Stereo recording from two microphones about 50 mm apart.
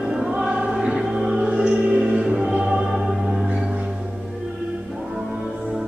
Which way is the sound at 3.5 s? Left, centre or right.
Right.